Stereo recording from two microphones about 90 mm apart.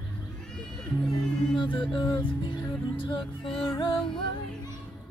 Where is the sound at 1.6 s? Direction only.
65° left (ahead or behind).